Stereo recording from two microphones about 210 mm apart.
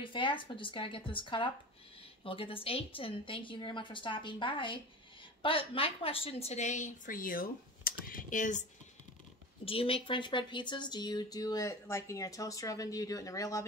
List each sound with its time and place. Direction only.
0.0 s a woman's voice: 25° left (ahead or behind)
9.7 s speech: 25° left (ahead or behind)